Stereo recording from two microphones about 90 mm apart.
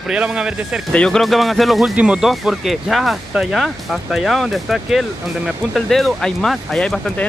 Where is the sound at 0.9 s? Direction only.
10° left (ahead or behind).